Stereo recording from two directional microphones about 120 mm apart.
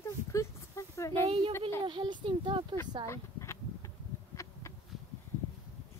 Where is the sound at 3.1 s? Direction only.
25° left (ahead or behind).